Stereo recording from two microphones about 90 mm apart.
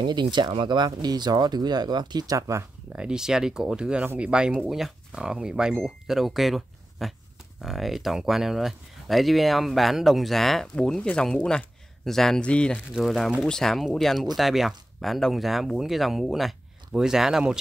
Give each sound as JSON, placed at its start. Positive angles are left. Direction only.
{"t": 0.0, "sound": "speech", "side_deg": -55}
{"t": 3.0, "sound": "speech", "side_deg": -10}
{"t": 12.7, "sound": "speech", "side_deg": -5}